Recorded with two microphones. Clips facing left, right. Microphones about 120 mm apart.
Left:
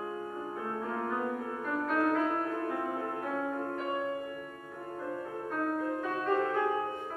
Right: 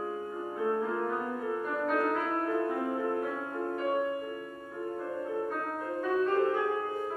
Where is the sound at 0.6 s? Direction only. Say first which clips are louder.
Right 6 dB; 5° right (ahead or behind).